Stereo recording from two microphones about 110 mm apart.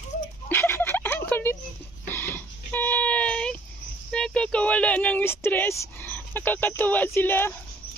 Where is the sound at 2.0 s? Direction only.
20° left (ahead or behind).